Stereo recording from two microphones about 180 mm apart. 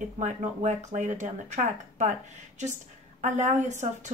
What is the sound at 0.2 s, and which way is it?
Speech, 45° right (ahead or behind).